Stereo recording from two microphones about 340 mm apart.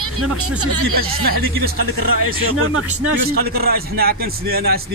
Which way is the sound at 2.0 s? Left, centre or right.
Right.